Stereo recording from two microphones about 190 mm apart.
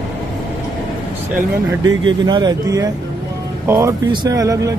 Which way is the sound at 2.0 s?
25° right (ahead or behind).